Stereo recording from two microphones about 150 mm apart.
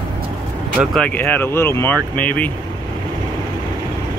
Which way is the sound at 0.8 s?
5° left (ahead or behind).